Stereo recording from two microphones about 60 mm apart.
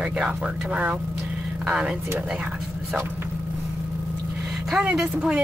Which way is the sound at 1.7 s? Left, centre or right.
Centre.